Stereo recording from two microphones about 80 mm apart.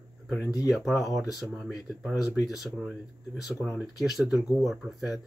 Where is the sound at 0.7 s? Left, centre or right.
Centre.